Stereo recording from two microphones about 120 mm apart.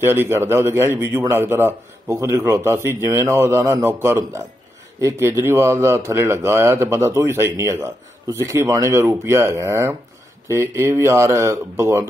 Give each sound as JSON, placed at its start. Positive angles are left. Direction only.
{"t": 0.0, "sound": "a man's voice", "side_deg": -20}